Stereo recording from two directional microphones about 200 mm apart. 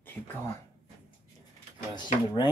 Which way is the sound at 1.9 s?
20° left (ahead or behind).